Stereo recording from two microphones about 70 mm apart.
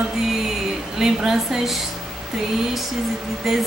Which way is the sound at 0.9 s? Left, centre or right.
Centre.